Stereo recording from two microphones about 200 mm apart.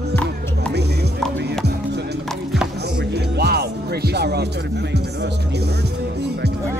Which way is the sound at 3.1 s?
55° right (ahead or behind).